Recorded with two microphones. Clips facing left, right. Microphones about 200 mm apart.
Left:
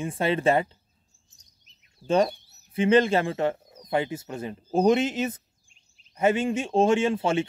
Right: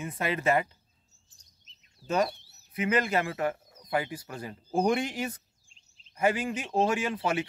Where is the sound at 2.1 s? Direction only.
30° left (ahead or behind).